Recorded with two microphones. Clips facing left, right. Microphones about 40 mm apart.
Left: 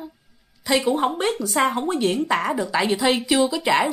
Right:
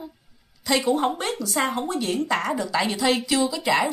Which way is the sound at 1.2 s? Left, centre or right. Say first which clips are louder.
Left 4 dB; left.